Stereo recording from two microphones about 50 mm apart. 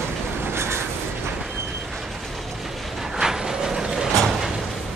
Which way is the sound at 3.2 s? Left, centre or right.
Centre.